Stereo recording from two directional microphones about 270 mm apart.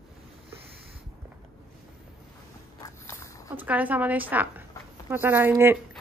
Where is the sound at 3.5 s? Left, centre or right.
Centre.